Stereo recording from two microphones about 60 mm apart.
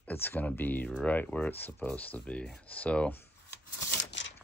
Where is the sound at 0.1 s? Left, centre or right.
Left.